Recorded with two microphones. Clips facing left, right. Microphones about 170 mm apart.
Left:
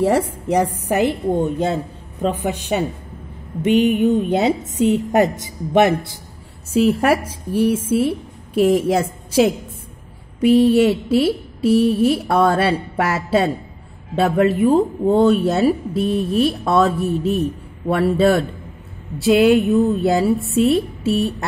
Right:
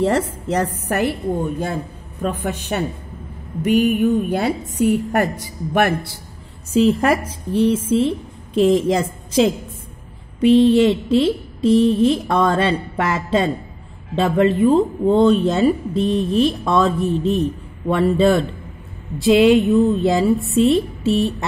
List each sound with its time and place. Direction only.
0.0 s a woman's voice: 10° left (ahead or behind)
6.7 s a woman's voice: 5° left (ahead or behind)